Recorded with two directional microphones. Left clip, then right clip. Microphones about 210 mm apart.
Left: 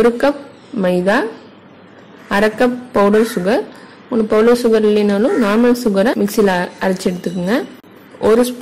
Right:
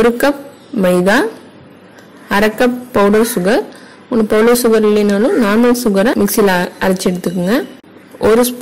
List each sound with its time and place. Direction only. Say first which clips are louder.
0.0 s speech: right 1 dB; 15° right (ahead or behind)
2.2 s a woman's voice: right 2 dB; 15° right (ahead or behind)